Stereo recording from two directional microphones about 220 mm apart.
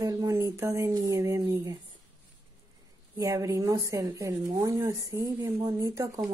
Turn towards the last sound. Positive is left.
turn(degrees=-15)  # may be behind; listen again after turning